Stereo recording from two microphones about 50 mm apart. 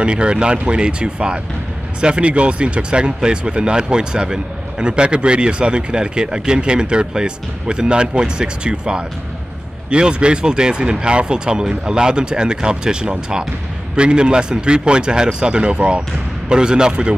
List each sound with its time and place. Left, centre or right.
0.0 s speech: centre